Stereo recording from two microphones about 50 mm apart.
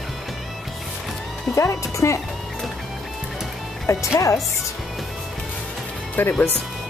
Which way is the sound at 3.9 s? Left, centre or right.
Left.